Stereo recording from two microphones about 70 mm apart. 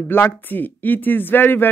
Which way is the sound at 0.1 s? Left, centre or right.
Left.